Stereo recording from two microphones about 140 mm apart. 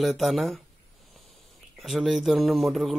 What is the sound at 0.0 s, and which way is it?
Speech, centre (ahead or behind).